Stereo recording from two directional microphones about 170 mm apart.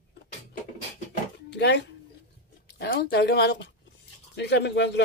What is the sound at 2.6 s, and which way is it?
Speech, 75° left (ahead or behind).